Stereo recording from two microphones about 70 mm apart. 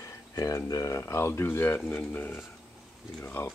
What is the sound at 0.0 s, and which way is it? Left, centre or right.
Speech, left.